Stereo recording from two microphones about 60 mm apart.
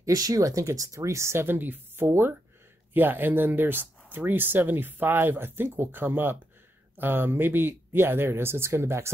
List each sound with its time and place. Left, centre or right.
0.0 s speech: right
0.7 s speech: right